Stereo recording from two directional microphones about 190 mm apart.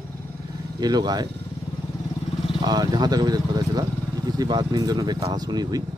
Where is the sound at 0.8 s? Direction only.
20° right (ahead or behind).